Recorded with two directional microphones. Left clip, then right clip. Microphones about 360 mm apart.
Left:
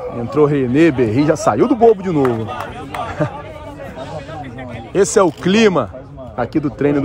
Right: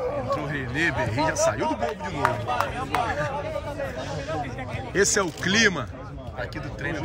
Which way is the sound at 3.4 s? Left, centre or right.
Centre.